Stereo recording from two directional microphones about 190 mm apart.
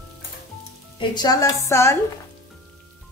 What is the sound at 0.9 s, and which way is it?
A woman's voice, 20° left (ahead or behind).